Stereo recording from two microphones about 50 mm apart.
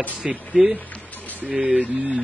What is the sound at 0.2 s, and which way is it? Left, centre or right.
Speech, right.